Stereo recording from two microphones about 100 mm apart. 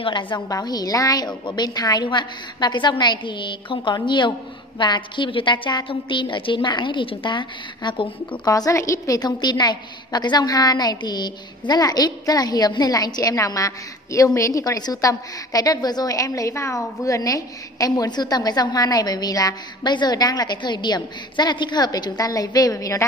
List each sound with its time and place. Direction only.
0.0 s a woman's voice: 55° left (ahead or behind)
0.5 s a woman's voice: 35° left (ahead or behind); by 8.4 s 55° left (ahead or behind)
8.5 s a woman's voice: 35° left (ahead or behind)